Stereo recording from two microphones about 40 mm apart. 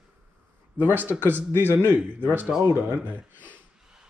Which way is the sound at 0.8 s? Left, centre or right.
Right.